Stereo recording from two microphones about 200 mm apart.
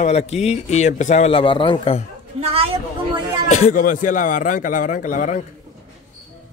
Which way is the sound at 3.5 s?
40° left (ahead or behind).